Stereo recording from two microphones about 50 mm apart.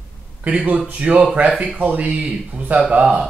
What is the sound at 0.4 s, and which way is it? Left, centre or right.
Speech, right.